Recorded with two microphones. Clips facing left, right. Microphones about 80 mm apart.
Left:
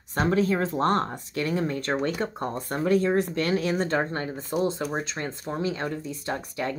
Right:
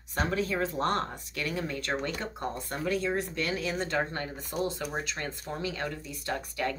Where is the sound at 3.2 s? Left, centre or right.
Left.